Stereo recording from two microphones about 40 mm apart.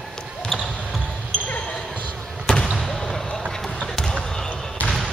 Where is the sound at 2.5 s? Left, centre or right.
Centre.